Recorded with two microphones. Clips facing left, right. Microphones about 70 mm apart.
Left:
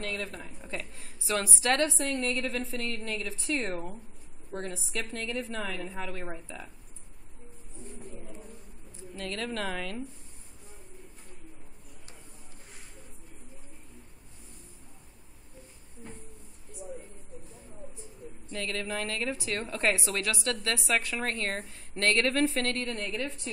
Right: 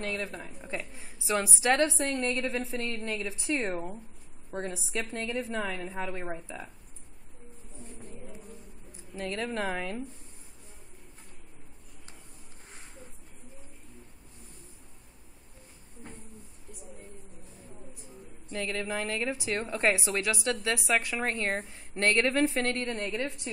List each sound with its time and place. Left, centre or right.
0.0 s a woman's voice: centre
9.3 s a woman's voice: centre
18.5 s a woman's voice: centre